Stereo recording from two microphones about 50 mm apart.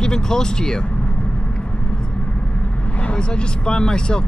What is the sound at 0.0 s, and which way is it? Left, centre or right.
Speech, centre.